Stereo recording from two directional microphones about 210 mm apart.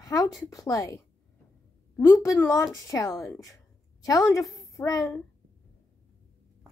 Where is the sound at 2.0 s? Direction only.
15° left (ahead or behind).